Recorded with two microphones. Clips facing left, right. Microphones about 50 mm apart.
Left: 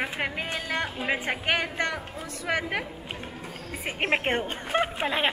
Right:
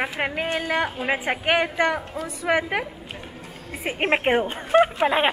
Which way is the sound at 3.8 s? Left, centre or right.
Centre.